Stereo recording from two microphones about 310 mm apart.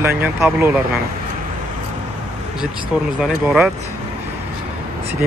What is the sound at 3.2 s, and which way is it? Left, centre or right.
Speech, centre.